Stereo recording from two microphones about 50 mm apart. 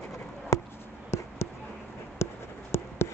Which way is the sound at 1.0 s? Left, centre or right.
Left.